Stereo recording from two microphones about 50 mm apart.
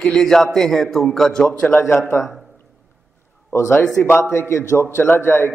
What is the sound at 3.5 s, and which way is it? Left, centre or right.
A man's voice, left.